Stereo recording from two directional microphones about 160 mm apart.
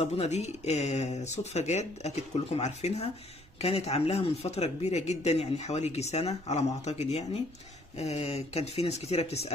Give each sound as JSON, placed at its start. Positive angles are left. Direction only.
{"t": 0.0, "sound": "speech", "side_deg": 40}